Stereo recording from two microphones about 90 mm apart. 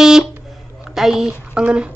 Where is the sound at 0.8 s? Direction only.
5° right (ahead or behind).